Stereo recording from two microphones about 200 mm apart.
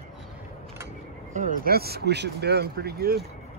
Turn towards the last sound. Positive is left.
turn(degrees=-50)  # may be behind; listen again after turning